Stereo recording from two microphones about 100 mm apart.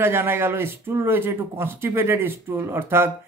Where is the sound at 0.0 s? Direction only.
25° right (ahead or behind).